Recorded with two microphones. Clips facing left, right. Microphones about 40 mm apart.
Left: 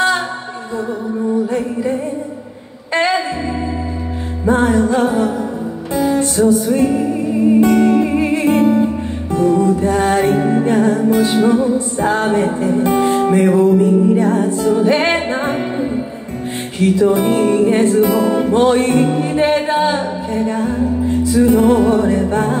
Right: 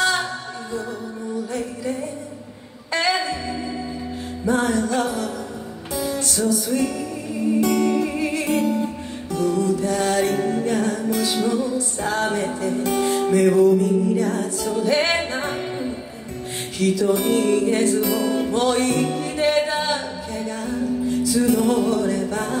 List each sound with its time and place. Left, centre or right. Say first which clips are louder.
1.3 s music: left 8 dB; left
3.1 s music: left 4 dB; left
4.5 s music: left 7 dB; left